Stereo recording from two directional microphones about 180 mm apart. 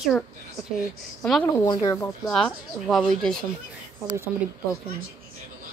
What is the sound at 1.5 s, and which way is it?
Speech, 20° left (ahead or behind).